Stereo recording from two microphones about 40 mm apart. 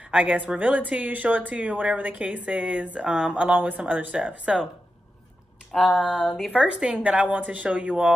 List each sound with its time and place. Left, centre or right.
0.1 s a woman's voice: right
0.6 s a woman's voice: right
3.1 s a woman's voice: centre
3.5 s speech: right
3.8 s a woman's voice: right
5.9 s speech: centre
6.5 s a woman's voice: right